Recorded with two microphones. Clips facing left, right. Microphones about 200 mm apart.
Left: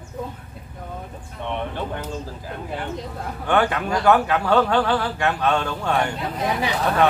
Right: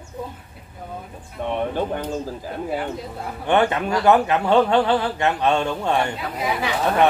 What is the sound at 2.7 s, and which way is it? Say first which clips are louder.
Speech: right 3 dB; 5° right (ahead or behind).